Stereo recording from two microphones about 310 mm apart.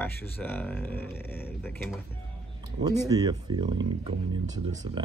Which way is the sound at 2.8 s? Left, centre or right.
Centre.